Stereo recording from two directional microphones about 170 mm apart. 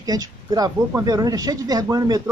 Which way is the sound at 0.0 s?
20° right (ahead or behind).